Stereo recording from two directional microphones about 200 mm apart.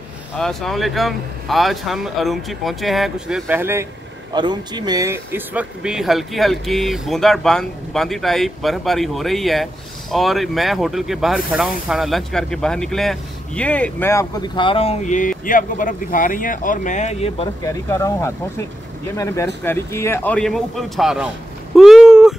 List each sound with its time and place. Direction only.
0.4 s speech: centre (ahead or behind)
4.3 s speech: 20° right (ahead or behind); by 14.2 s 10° left (ahead or behind)
14.5 s speech: 25° left (ahead or behind)
17.6 s speech: 15° left (ahead or behind); by 21.3 s centre (ahead or behind)
21.7 s a sound: centre (ahead or behind)